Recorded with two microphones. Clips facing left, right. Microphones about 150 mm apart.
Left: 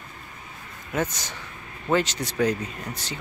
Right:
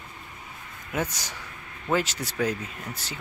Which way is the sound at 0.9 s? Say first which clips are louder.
Left 2 dB; 10° right (ahead or behind).